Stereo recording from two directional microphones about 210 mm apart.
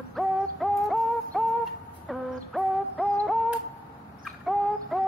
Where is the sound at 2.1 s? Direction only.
Centre (ahead or behind).